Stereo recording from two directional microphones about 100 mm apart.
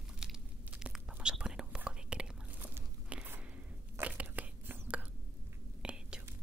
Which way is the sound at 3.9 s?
15° right (ahead or behind).